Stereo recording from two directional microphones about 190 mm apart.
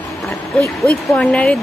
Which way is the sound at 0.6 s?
10° left (ahead or behind).